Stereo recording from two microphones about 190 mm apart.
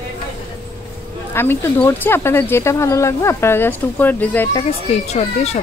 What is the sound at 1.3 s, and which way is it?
Speech, 10° left (ahead or behind).